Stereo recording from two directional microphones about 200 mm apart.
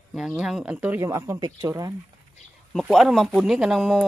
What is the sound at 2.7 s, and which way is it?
Speech, centre (ahead or behind).